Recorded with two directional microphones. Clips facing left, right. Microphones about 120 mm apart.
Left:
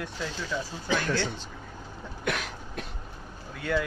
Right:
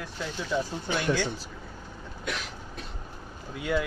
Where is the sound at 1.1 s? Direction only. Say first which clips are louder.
Right 2 dB; 10° right (ahead or behind).